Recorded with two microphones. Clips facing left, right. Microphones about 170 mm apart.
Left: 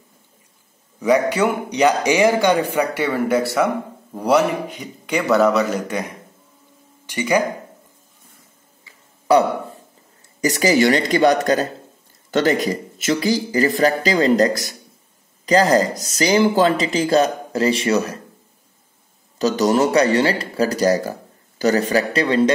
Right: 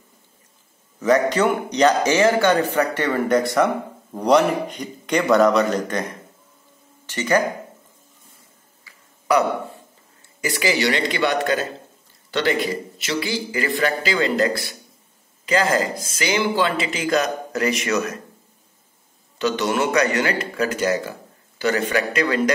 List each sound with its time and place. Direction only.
0.9 s a man's voice: 10° left (ahead or behind)
7.1 s a man's voice: 10° left (ahead or behind)
10.4 s speech: 40° left (ahead or behind)
19.3 s speech: 40° left (ahead or behind)